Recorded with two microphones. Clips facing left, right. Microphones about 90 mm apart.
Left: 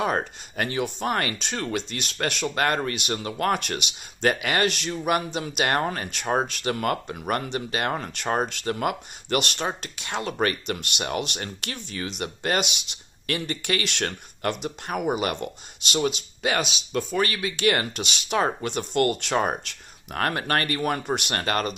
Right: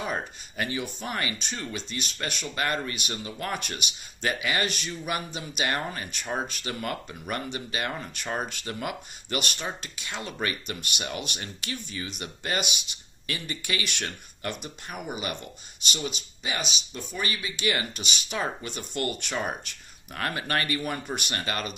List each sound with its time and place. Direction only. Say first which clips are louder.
0.6 s speech: left 5 dB; 60° left (ahead or behind)
1.4 s speech: left 6 dB; 75° left (ahead or behind)
2.5 s speech: left 3 dB; 55° left (ahead or behind); by 3.8 s 80° left
4.2 s speech: left 5 dB; 50° left (ahead or behind)
4.6 s speech: left 6 dB; 90° left
4.9 s speech: left 7 dB; 60° left (ahead or behind)
13.3 s speech: left 6 dB; 55° left (ahead or behind)
14.6 s speech: left 9 dB; 90° left
17.2 s speech: left 4 dB; 70° left (ahead or behind)
20.2 s speech: left 4 dB; 50° left (ahead or behind)